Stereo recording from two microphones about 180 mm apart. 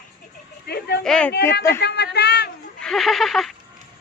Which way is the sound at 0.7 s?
60° left (ahead or behind).